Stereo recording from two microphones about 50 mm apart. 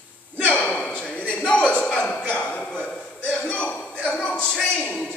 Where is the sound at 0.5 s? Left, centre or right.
Left.